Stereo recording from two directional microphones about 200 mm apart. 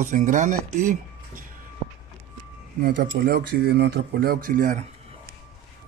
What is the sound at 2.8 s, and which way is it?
Speech, 45° right (ahead or behind).